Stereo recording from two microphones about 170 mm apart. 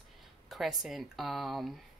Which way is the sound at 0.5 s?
Centre (ahead or behind).